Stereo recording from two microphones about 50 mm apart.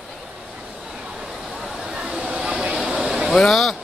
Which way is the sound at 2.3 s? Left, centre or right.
Centre.